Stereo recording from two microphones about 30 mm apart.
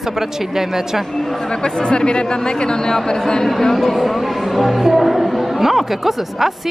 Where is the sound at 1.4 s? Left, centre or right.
Left.